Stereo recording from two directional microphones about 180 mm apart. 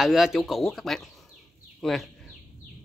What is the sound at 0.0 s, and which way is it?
Speech, centre (ahead or behind).